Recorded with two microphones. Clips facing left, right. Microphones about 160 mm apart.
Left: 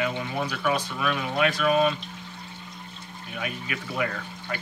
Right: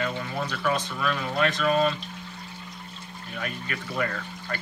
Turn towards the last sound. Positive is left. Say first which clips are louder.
# even
turn(degrees=5)  # may be behind; listen again after turning